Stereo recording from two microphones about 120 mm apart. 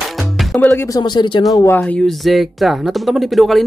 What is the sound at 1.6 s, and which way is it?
Speech, 15° left (ahead or behind).